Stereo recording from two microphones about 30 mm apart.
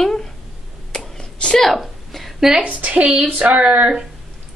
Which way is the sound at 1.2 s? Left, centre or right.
Left.